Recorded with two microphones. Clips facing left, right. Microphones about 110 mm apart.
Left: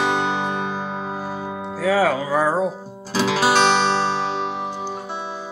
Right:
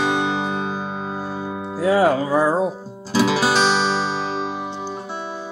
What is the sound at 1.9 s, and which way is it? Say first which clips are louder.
Music: right 2 dB; 20° right (ahead or behind).